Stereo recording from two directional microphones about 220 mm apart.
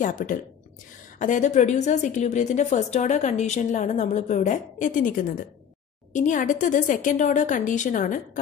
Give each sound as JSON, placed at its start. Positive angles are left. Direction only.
{"t": 0.0, "sound": "a woman's voice", "side_deg": 35}